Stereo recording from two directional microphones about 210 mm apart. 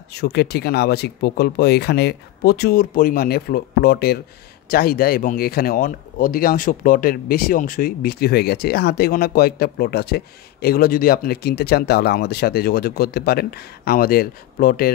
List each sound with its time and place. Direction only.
0.1 s speech: 50° left (ahead or behind)